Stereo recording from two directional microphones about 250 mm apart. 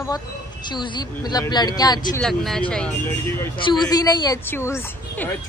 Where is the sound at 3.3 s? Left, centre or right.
Centre.